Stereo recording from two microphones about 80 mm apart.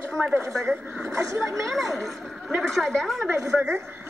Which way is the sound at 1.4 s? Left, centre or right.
Centre.